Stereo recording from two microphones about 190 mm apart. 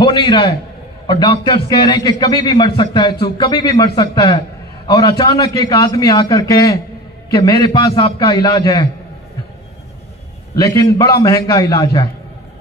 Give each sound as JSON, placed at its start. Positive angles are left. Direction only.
{"t": 0.0, "sound": "a man's voice", "side_deg": 20}
{"t": 10.5, "sound": "a man's voice", "side_deg": 20}